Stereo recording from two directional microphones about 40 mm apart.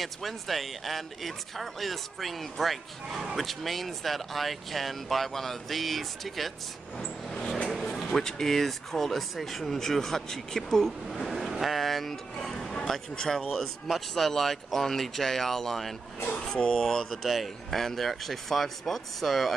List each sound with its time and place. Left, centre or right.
0.0 s speech: centre
8.0 s speech: centre
11.1 s speech: centre
13.8 s speech: centre
16.4 s speech: centre
17.1 s speech: centre